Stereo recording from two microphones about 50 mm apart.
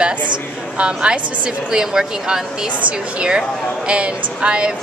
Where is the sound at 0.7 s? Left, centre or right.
Right.